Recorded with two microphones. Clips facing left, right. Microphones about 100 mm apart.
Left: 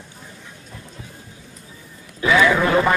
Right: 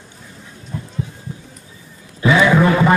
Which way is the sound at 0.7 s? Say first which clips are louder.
Right 13 dB; 35° right (ahead or behind).